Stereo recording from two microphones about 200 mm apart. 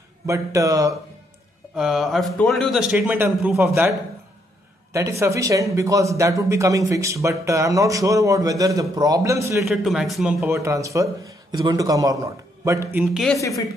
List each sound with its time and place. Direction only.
0.3 s speech: 15° right (ahead or behind)
1.8 s speech: centre (ahead or behind)
4.9 s speech: 15° right (ahead or behind)
9.7 s speech: centre (ahead or behind)
10.4 s speech: 15° right (ahead or behind)
13.0 s speech: centre (ahead or behind)